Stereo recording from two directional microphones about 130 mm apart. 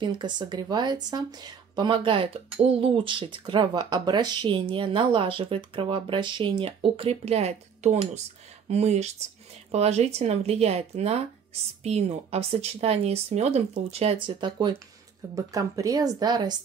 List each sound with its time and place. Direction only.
0.0 s speech: 35° right (ahead or behind); by 13.6 s 55° right (ahead or behind)
13.9 s speech: 45° right (ahead or behind)
15.3 s a woman's voice: 25° right (ahead or behind)